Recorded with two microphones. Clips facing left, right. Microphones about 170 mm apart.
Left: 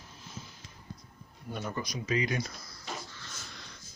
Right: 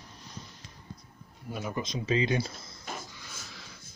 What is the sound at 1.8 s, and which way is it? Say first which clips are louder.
Speech: right 4 dB; 25° right (ahead or behind).